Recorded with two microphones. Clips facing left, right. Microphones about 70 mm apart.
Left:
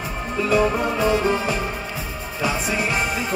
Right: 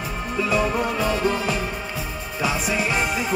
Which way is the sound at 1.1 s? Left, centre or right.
Centre.